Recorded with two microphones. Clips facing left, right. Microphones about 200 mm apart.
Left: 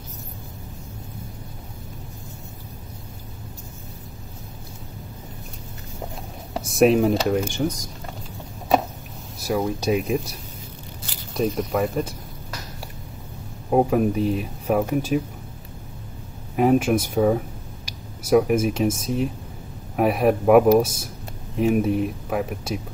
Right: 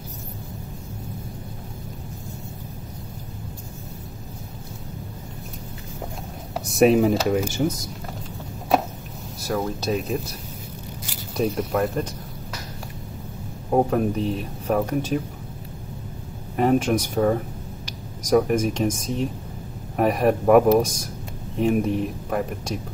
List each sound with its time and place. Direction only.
6.5 s speech: centre (ahead or behind)
9.4 s speech: 15° left (ahead or behind)
11.3 s speech: centre (ahead or behind)
13.7 s speech: 5° left (ahead or behind)
16.5 s speech: 5° left (ahead or behind)